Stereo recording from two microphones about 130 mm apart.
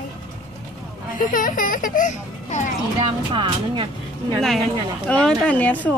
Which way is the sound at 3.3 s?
40° right (ahead or behind).